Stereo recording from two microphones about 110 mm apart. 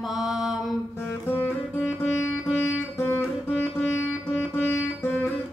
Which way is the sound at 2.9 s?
20° left (ahead or behind).